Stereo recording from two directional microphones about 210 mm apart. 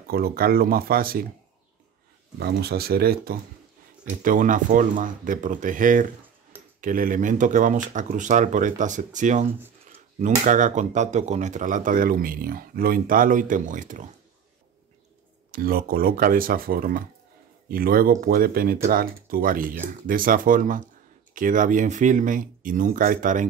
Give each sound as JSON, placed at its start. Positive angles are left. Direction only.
{"t": 0.1, "sound": "speech", "side_deg": -45}
{"t": 2.3, "sound": "speech", "side_deg": -50}
{"t": 15.5, "sound": "speech", "side_deg": -45}